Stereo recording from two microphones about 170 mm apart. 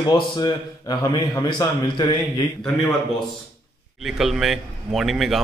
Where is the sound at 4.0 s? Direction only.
Centre (ahead or behind).